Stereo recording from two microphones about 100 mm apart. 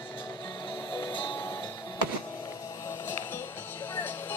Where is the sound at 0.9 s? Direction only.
55° left (ahead or behind).